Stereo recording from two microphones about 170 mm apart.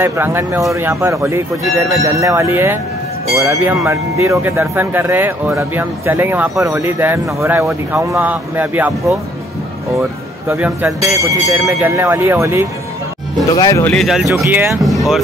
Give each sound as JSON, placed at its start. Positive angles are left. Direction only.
{"t": 0.0, "sound": "speech", "side_deg": -15}
{"t": 10.5, "sound": "speech", "side_deg": -15}
{"t": 13.6, "sound": "speech", "side_deg": 20}
{"t": 13.9, "sound": "speech", "side_deg": 0}
{"t": 14.2, "sound": "speech", "side_deg": -15}